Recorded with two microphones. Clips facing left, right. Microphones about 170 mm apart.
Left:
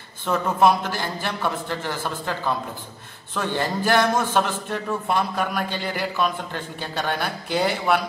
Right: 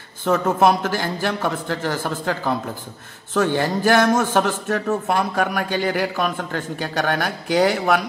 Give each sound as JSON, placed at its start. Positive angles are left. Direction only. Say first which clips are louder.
{"t": 0.2, "sound": "a man's voice", "louder": "right 2 dB", "side_deg": -45}